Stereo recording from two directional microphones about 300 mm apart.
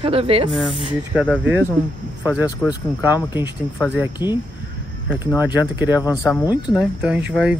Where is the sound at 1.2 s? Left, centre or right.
Centre.